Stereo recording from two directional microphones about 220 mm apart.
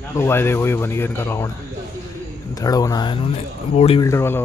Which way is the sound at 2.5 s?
15° left (ahead or behind).